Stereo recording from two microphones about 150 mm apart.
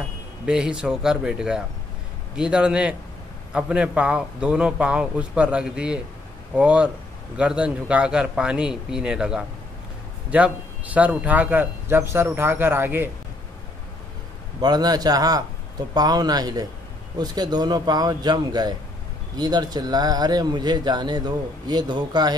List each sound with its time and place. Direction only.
0.5 s a man's voice: 5° right (ahead or behind)
14.6 s speech: 25° right (ahead or behind)